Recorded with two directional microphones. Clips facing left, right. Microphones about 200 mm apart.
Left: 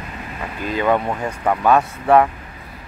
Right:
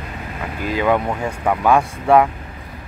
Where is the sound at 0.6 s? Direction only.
10° right (ahead or behind).